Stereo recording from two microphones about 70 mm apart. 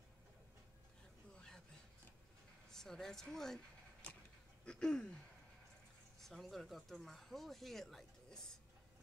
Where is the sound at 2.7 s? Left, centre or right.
Centre.